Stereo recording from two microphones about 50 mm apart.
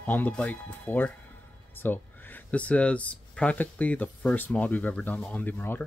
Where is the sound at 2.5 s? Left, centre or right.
Left.